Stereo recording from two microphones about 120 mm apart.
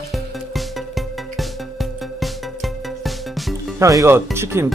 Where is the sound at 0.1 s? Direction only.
Centre (ahead or behind).